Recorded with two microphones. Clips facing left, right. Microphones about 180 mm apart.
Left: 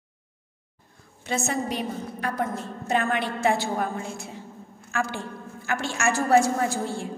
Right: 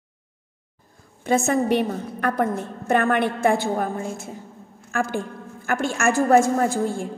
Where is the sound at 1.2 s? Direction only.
50° right (ahead or behind).